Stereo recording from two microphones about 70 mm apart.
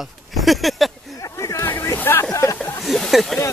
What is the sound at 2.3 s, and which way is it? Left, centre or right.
Speech, left.